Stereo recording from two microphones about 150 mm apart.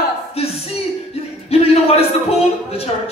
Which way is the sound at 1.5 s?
40° left (ahead or behind).